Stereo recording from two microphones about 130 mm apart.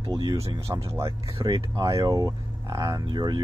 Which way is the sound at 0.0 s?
30° right (ahead or behind).